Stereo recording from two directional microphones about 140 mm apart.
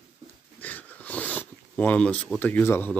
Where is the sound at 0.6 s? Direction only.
10° left (ahead or behind).